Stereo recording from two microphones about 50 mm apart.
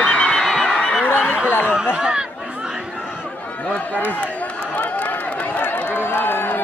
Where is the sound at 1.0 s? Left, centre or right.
Left.